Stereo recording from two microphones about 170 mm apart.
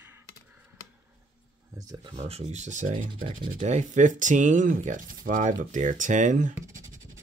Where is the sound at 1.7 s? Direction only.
20° right (ahead or behind).